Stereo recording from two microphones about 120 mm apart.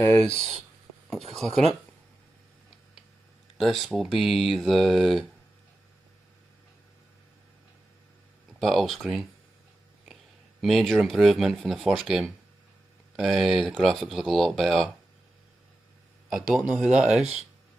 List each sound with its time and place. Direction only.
0.0 s speech: 15° left (ahead or behind)
1.1 s speech: 5° left (ahead or behind)
3.5 s speech: centre (ahead or behind)
8.5 s speech: 5° left (ahead or behind)
10.6 s speech: centre (ahead or behind)
16.3 s speech: 5° right (ahead or behind)